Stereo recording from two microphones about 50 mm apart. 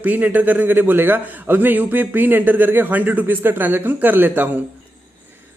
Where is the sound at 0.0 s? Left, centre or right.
Right.